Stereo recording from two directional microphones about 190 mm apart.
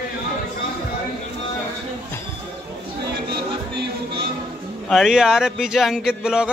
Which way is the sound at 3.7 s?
60° right (ahead or behind).